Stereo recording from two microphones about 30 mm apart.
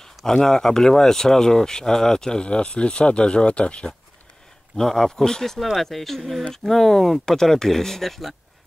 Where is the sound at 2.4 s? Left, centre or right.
Left.